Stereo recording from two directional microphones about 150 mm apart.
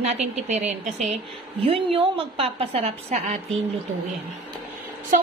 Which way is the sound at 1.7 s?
35° right (ahead or behind).